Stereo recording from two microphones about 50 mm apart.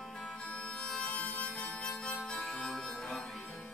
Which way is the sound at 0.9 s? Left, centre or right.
Left.